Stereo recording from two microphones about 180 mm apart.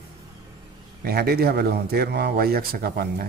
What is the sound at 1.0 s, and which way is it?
A man's voice, 60° right (ahead or behind).